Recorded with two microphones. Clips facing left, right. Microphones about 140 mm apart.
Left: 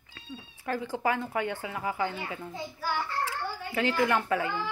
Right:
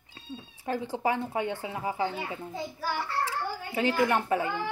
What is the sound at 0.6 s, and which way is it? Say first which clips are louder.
A woman's voice: even; 20° right (ahead or behind).